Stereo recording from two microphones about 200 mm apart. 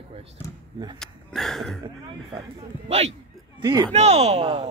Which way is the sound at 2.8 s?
35° right (ahead or behind).